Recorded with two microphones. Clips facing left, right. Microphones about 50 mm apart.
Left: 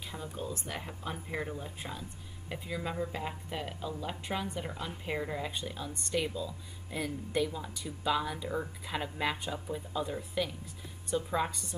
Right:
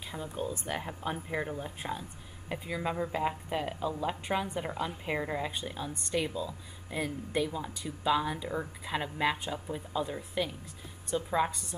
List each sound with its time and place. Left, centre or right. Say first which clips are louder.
0.0 s a woman's voice: right 3 dB; centre